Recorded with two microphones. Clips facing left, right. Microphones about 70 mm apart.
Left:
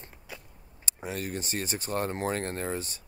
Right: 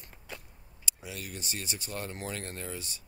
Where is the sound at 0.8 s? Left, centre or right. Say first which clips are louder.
Left 7 dB; left.